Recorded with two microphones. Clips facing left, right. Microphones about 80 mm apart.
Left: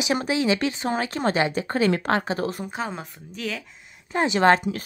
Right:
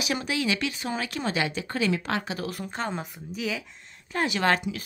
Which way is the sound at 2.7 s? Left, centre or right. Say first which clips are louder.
Left 1 dB; centre.